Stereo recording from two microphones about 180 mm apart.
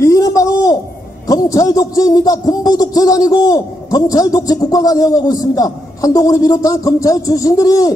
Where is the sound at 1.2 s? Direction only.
20° left (ahead or behind).